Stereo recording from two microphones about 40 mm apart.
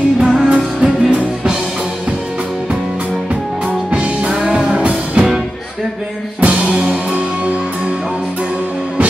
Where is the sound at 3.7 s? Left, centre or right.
Right.